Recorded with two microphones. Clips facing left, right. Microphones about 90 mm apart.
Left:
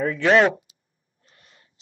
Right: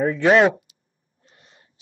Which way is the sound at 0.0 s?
25° right (ahead or behind).